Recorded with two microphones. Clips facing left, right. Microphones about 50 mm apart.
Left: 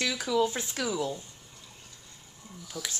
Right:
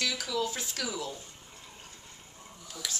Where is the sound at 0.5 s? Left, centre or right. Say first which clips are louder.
Left 4 dB; left.